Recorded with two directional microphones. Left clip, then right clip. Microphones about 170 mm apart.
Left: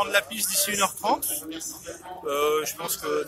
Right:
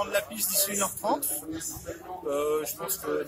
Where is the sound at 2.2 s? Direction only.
20° left (ahead or behind).